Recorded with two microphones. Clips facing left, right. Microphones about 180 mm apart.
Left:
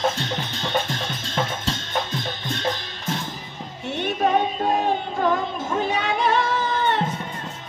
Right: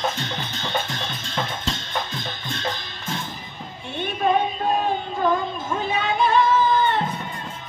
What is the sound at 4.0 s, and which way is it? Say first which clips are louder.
Music: even; 75° left (ahead or behind).